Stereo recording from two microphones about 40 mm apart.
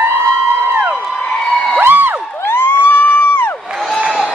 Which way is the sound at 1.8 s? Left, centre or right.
Right.